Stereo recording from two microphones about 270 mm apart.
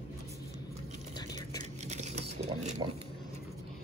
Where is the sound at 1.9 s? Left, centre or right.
Right.